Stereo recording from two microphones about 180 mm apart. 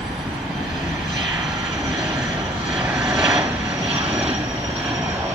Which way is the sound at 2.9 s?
5° right (ahead or behind).